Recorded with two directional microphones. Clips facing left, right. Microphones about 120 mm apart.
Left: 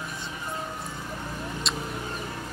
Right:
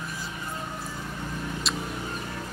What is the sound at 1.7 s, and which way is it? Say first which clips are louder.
Vehicle: even; centre (ahead or behind).